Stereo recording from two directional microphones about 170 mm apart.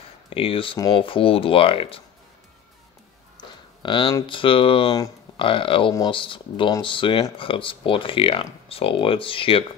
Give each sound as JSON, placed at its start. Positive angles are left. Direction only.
{"t": 0.3, "sound": "speech", "side_deg": 35}
{"t": 3.3, "sound": "speech", "side_deg": 30}